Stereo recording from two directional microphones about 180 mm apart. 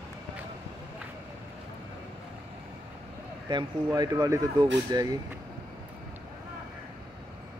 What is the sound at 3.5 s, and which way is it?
Speech, 25° right (ahead or behind).